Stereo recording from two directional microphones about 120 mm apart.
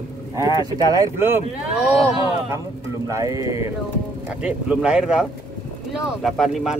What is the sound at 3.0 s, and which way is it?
Speech, 25° right (ahead or behind).